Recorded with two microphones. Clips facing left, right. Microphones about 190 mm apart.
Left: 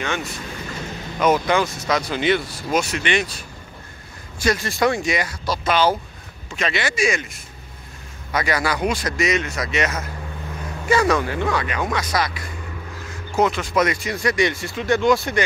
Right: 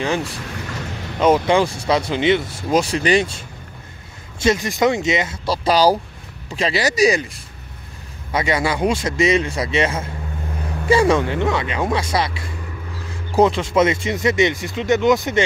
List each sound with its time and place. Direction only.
0.0 s speech: 30° right (ahead or behind)
8.3 s speech: 25° right (ahead or behind)